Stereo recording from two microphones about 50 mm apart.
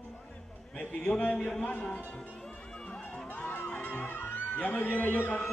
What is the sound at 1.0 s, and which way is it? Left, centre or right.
Speech, left.